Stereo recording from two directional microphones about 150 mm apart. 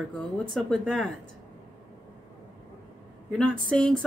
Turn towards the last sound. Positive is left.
turn(degrees=5)  # may be behind; listen again after turning